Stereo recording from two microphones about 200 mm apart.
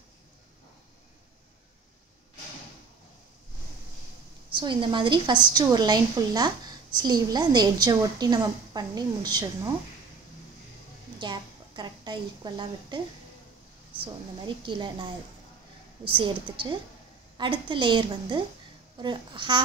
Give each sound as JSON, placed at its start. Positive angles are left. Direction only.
{"t": 4.5, "sound": "a woman's voice", "side_deg": -25}
{"t": 11.1, "sound": "a woman's voice", "side_deg": -20}
{"t": 16.2, "sound": "a woman's voice", "side_deg": -25}